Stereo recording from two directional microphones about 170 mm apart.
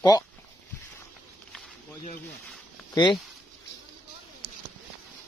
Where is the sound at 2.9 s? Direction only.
25° left (ahead or behind).